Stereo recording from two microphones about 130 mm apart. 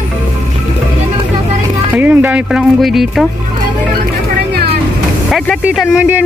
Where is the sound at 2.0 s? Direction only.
10° right (ahead or behind).